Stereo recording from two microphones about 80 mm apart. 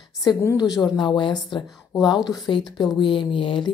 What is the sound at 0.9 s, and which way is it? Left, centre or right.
Speech, left.